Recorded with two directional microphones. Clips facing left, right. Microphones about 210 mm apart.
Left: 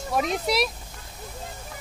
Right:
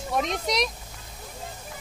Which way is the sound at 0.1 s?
5° left (ahead or behind).